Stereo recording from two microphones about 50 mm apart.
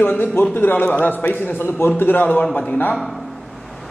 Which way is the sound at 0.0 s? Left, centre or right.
Left.